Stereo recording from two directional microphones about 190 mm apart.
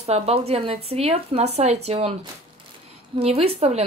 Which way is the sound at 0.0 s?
35° right (ahead or behind).